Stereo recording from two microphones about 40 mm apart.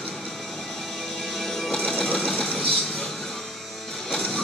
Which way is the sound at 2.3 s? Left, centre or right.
Left.